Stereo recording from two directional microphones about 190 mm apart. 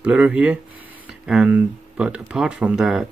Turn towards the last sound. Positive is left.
turn(degrees=-5)  # may be behind; listen again after turning